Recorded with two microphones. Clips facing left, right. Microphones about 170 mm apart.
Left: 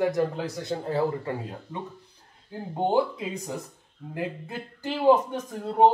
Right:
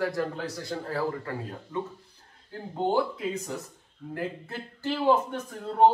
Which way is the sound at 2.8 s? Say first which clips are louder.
Left 2 dB; 20° left (ahead or behind).